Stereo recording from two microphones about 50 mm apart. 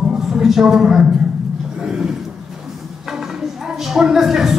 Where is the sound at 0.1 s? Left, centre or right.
Centre.